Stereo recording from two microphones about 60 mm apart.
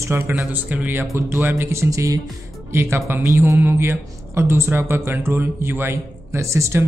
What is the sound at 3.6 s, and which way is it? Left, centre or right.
Speech, right.